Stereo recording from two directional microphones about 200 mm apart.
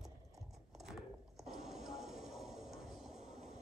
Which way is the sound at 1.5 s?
Centre (ahead or behind).